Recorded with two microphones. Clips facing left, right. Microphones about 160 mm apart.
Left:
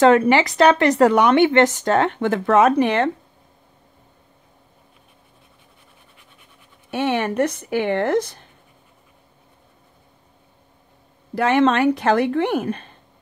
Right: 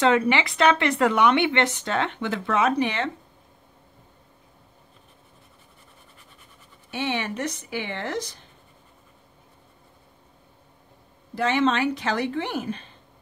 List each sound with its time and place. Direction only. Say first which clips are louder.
0.0 s speech: left 7 dB; 50° left (ahead or behind)
6.9 s speech: left 7 dB; 50° left (ahead or behind)
11.3 s speech: left 5 dB; 60° left (ahead or behind)